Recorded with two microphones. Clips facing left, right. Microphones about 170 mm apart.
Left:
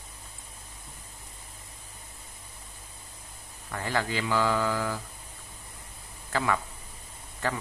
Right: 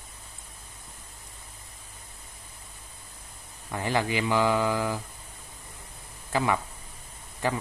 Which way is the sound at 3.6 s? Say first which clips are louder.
Right 3 dB; 15° right (ahead or behind).